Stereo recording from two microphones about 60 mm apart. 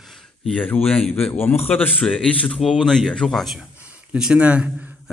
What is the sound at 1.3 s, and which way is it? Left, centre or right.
A man's voice, left.